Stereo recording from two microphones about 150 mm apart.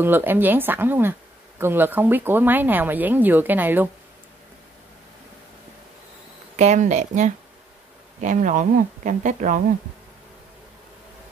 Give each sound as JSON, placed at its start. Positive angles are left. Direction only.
{"t": 0.0, "sound": "speech", "side_deg": -15}
{"t": 6.5, "sound": "speech", "side_deg": -50}